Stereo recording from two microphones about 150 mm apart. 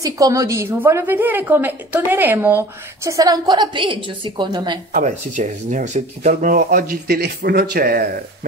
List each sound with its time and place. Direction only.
0.0 s a woman's voice: 25° right (ahead or behind)
4.9 s speech: 55° right (ahead or behind); by 8.2 s 85° right